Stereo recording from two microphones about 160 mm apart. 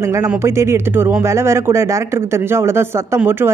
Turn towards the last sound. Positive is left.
turn(degrees=-15)  # may be behind; listen again after turning